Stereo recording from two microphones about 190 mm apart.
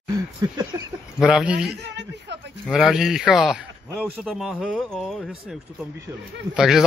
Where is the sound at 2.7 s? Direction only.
Centre (ahead or behind).